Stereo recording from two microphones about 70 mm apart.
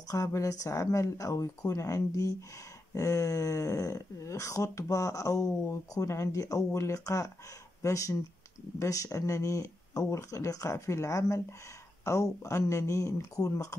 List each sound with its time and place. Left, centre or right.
0.3 s speech: left